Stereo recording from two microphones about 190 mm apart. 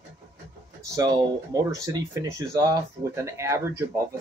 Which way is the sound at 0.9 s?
20° right (ahead or behind).